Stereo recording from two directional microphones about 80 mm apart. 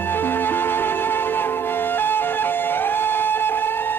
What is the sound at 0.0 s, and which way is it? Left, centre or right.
Music, left.